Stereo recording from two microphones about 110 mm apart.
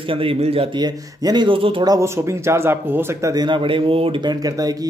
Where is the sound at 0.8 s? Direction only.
40° right (ahead or behind).